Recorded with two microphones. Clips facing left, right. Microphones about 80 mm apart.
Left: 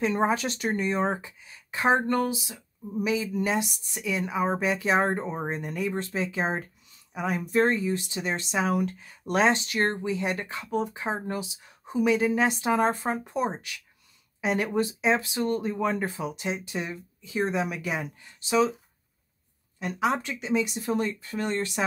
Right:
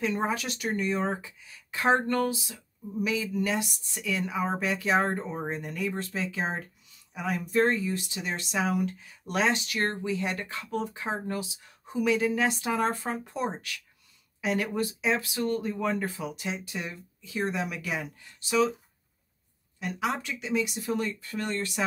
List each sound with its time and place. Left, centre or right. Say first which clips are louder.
0.0 s speech: left 4 dB; left
8.6 s speech: left 2 dB; left
19.8 s speech: left 4 dB; left